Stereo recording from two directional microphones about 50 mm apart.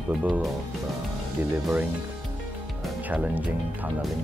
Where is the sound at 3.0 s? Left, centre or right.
Right.